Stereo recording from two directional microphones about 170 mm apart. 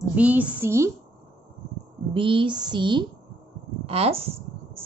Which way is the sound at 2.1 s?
30° right (ahead or behind).